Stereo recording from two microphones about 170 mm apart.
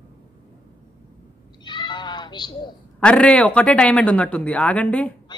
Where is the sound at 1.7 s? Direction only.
25° left (ahead or behind).